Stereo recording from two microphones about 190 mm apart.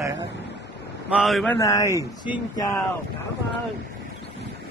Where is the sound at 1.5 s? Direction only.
15° left (ahead or behind).